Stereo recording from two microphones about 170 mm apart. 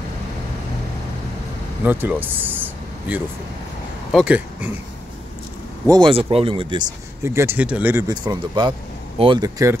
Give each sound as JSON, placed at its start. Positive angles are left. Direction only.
{"t": 1.9, "sound": "speech", "side_deg": -10}
{"t": 5.9, "sound": "speech", "side_deg": -25}
{"t": 7.2, "sound": "speech", "side_deg": -15}
{"t": 8.1, "sound": "speech", "side_deg": -25}